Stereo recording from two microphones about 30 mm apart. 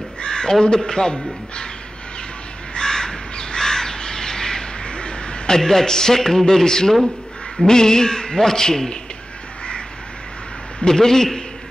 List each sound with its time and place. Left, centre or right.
0.2 s speech: left
2.7 s crow: left
4.8 s a sound: left
5.5 s a man's voice: centre
10.9 s a man's voice: centre